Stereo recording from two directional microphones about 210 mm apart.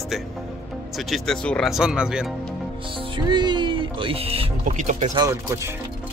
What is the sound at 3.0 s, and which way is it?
Music, 20° right (ahead or behind).